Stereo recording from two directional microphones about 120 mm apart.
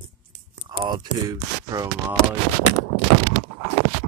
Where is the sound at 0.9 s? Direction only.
30° right (ahead or behind).